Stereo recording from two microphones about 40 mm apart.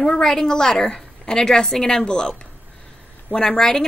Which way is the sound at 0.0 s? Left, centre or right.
Centre.